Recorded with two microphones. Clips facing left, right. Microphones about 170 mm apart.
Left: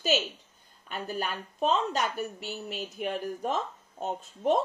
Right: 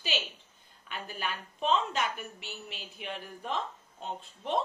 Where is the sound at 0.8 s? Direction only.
40° left (ahead or behind).